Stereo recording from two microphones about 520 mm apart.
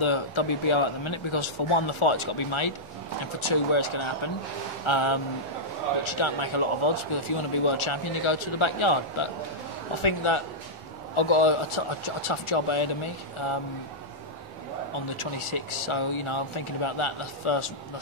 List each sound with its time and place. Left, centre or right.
0.0 s a man's voice: left
15.1 s speech: left